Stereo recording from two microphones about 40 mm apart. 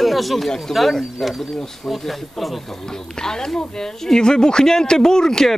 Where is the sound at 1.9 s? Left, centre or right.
Centre.